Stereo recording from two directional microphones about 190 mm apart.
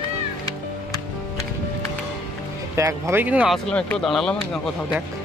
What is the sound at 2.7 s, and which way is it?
Speech, 15° right (ahead or behind).